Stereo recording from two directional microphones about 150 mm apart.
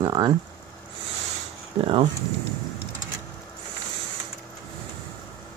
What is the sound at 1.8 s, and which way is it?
Speech, 35° right (ahead or behind).